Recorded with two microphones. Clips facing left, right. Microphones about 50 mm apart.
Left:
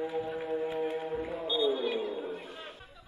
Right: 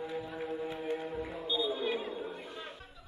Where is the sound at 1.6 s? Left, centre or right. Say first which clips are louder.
Left 5 dB; left.